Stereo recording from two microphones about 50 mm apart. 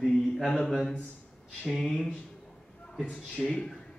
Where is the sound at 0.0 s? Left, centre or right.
Centre.